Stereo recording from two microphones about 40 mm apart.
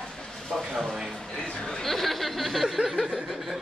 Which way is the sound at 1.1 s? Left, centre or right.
Centre.